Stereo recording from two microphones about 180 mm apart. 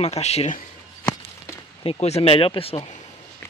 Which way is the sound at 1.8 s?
35° left (ahead or behind).